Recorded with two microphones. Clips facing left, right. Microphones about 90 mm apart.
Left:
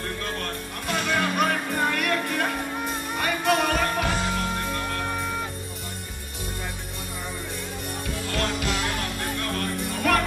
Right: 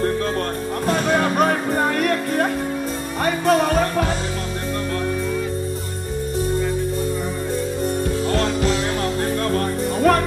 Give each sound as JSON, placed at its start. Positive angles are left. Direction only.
{"t": 0.8, "sound": "music", "side_deg": -35}
{"t": 8.3, "sound": "music", "side_deg": -35}